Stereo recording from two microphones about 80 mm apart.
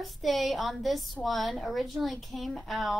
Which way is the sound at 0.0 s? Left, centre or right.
Centre.